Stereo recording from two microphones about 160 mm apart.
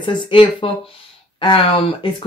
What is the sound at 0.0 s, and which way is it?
Speech, 30° left (ahead or behind).